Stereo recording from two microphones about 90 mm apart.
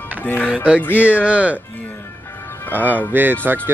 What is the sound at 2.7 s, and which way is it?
Speech, 20° right (ahead or behind).